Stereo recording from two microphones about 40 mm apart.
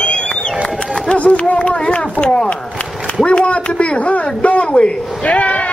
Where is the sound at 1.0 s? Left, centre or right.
Left.